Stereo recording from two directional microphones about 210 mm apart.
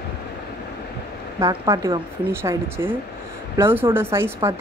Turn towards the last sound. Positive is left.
turn(degrees=-10)  # may be behind; listen again after turning